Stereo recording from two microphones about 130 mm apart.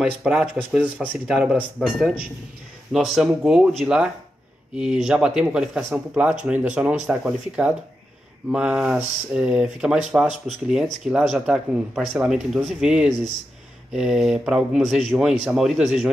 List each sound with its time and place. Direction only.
0.0 s speech: 5° right (ahead or behind)
1.8 s speech: centre (ahead or behind)